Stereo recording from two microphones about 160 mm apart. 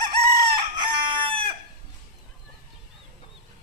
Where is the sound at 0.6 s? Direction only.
30° right (ahead or behind).